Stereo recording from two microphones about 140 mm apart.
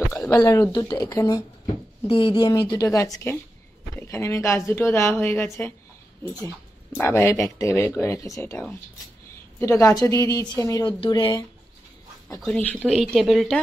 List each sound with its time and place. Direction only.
0.3 s a woman's voice: 25° left (ahead or behind)
2.0 s a woman's voice: 40° left (ahead or behind); by 5.7 s 15° left (ahead or behind)
7.0 s a woman's voice: 20° left (ahead or behind)
12.4 s a woman's voice: 10° left (ahead or behind)
12.9 s speech: centre (ahead or behind)